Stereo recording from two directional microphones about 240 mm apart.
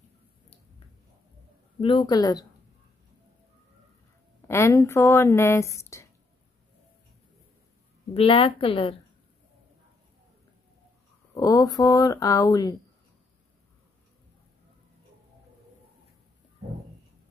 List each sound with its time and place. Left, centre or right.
1.8 s speech: left
4.5 s speech: centre
8.1 s a woman's voice: left
11.3 s speech: centre